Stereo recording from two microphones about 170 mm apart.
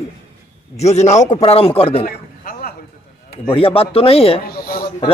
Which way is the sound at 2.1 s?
60° left (ahead or behind).